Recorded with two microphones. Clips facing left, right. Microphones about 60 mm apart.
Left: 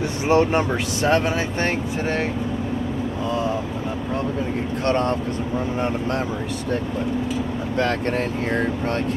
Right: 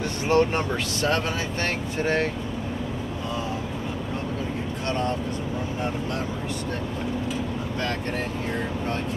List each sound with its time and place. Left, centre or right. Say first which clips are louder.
0.3 s speech: left 3 dB; centre
4.8 s speech: left 6 dB; left